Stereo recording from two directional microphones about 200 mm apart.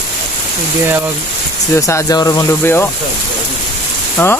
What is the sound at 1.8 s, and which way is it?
Speech, 15° left (ahead or behind).